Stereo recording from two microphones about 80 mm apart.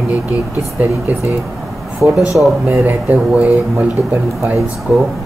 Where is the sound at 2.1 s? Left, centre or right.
Centre.